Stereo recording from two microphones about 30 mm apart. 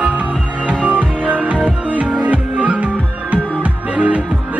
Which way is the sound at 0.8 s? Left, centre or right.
Right.